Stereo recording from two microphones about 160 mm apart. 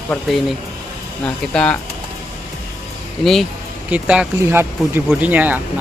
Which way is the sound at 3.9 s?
10° right (ahead or behind).